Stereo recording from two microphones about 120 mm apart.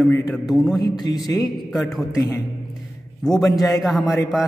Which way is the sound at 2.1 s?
30° left (ahead or behind).